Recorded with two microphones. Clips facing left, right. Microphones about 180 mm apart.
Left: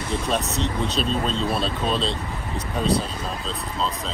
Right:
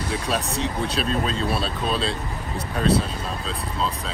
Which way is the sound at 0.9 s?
5° right (ahead or behind).